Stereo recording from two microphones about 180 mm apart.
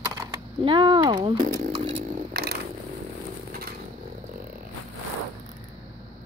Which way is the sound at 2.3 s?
65° right (ahead or behind).